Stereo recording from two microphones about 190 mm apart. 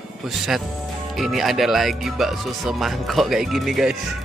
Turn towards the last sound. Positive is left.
turn(degrees=0)  # may be behind; listen again after turning